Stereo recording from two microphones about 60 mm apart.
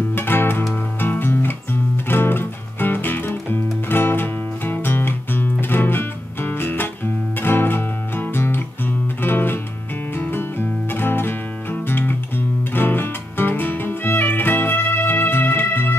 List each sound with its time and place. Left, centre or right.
0.1 s music: left